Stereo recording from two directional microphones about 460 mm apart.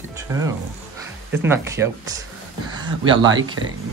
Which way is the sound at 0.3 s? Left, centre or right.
Centre.